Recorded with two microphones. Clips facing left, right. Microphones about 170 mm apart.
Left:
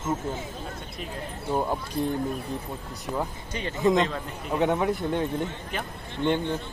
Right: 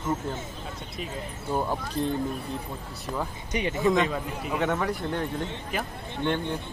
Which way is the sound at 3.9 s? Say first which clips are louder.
Even; 5° right (ahead or behind).